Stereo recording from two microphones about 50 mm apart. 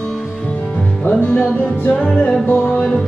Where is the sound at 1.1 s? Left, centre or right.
Left.